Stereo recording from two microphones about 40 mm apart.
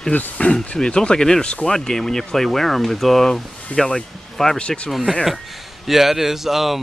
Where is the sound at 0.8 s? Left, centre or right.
Left.